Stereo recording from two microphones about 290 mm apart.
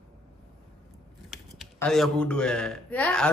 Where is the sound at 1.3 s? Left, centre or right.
Centre.